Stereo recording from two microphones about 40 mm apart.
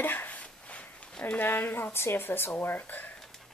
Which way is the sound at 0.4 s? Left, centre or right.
Left.